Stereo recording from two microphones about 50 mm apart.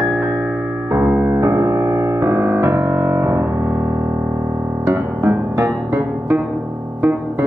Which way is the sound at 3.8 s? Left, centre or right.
Right.